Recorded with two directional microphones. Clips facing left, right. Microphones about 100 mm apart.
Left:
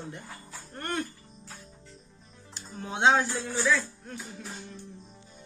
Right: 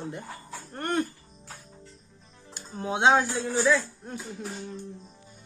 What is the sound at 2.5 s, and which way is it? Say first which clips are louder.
Speech: right 6 dB; 10° right (ahead or behind).